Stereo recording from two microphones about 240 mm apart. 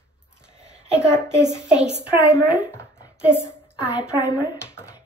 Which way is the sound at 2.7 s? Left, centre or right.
Centre.